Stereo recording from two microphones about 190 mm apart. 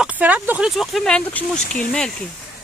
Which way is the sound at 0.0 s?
10° right (ahead or behind).